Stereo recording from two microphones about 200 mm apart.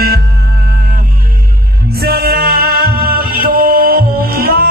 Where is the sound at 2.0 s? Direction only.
50° right (ahead or behind).